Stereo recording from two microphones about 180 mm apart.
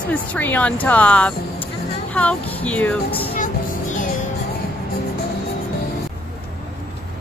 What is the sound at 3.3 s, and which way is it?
Music, 50° left (ahead or behind).